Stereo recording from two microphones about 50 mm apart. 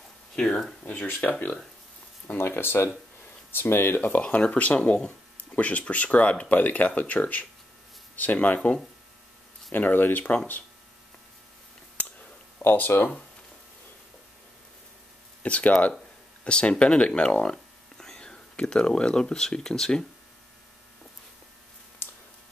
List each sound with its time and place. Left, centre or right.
0.4 s speech: centre
2.2 s speech: left
4.2 s speech: left
9.7 s speech: left
12.6 s speech: left
15.4 s speech: left